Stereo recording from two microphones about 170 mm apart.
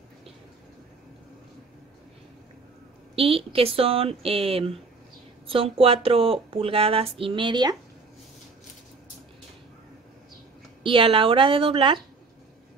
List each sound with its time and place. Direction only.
3.2 s speech: 35° right (ahead or behind)
10.8 s speech: 30° right (ahead or behind)